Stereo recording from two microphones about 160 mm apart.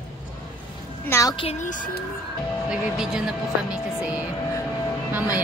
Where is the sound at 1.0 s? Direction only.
15° left (ahead or behind).